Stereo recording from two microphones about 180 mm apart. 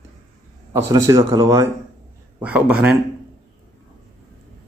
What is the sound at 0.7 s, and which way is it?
Speech, 20° right (ahead or behind).